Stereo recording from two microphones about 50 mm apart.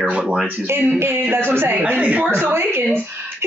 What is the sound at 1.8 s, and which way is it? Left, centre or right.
Speech, right.